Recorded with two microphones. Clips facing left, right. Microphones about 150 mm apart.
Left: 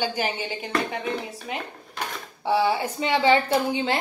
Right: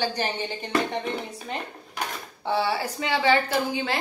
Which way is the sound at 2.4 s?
15° left (ahead or behind).